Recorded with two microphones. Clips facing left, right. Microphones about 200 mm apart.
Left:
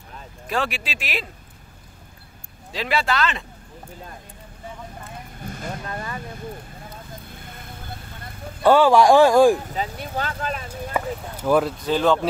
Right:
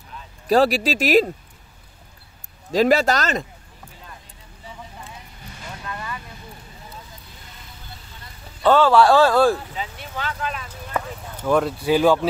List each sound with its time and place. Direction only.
0.5 s speech: 40° right (ahead or behind)
2.7 s speech: 40° right (ahead or behind)
5.0 s vehicle: 50° left (ahead or behind)
8.6 s speech: 15° left (ahead or behind)
9.7 s speech: 40° left (ahead or behind)
10.9 s a sound: 10° left (ahead or behind)
11.8 s speech: 10° right (ahead or behind)